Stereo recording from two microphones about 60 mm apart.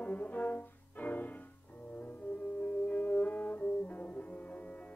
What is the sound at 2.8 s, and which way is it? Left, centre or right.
Music, left.